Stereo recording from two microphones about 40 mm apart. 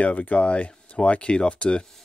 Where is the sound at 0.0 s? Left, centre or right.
Left.